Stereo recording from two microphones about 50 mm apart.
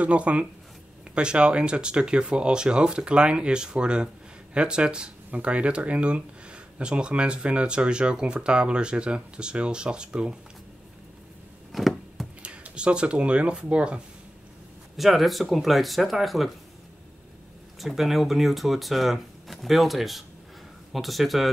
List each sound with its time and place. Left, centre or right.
0.0 s speech: right
11.7 s a sound: centre
12.4 s speech: right
15.0 s speech: centre
17.7 s speech: centre